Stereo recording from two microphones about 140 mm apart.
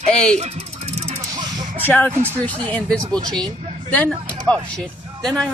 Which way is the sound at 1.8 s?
10° left (ahead or behind).